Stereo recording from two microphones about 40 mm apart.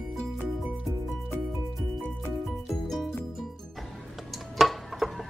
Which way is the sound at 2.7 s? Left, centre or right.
Centre.